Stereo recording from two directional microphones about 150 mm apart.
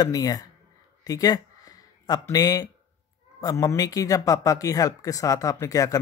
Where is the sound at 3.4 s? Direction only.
25° left (ahead or behind).